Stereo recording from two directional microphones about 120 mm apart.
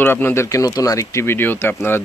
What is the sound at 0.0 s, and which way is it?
Speech, 20° left (ahead or behind).